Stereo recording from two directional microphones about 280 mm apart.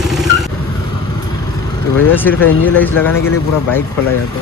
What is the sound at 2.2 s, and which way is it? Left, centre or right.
Speech, centre.